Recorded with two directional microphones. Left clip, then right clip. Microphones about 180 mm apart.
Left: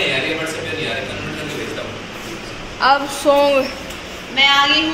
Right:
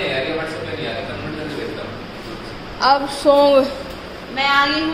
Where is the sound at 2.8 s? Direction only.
5° right (ahead or behind).